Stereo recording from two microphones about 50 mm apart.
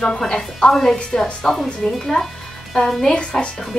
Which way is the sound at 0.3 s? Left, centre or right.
Centre.